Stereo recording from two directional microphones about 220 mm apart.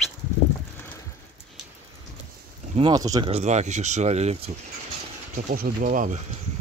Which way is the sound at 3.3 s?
30° right (ahead or behind).